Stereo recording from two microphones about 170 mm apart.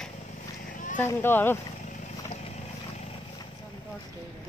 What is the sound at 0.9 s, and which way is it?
Speech, 10° left (ahead or behind).